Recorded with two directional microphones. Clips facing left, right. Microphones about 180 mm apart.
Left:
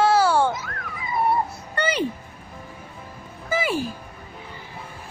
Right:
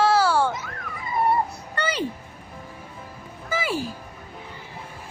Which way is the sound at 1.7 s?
20° left (ahead or behind).